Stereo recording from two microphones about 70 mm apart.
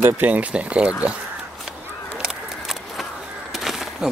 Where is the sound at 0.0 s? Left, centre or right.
Right.